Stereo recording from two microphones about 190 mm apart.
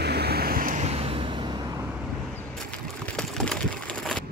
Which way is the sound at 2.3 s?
5° left (ahead or behind).